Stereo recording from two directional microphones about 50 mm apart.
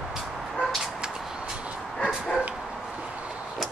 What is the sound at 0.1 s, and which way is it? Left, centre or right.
Vehicle, centre.